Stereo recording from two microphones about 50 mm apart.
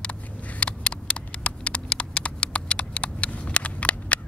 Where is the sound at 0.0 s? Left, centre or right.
Left.